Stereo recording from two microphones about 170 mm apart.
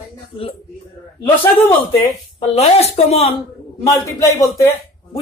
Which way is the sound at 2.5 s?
35° left (ahead or behind).